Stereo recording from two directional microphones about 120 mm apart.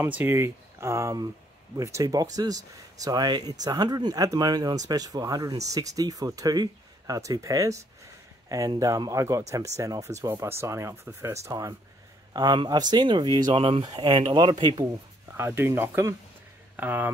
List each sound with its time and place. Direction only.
0.0 s speech: 20° right (ahead or behind); by 13.8 s 50° right (ahead or behind)
13.8 s speech: 35° right (ahead or behind)
14.8 s speech: 25° right (ahead or behind)